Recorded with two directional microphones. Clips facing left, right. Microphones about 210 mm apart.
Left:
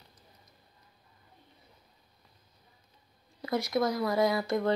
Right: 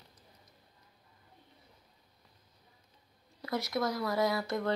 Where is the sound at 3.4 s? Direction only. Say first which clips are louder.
Left 4 dB; 15° left (ahead or behind).